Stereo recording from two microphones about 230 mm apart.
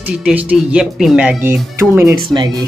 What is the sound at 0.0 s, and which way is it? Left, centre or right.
Speech, centre.